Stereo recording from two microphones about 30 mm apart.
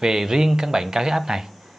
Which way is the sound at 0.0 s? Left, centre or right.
Centre.